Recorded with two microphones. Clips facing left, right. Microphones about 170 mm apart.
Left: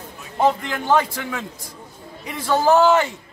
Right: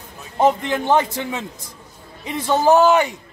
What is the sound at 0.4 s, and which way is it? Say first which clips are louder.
A man's voice: right 2 dB; 20° right (ahead or behind).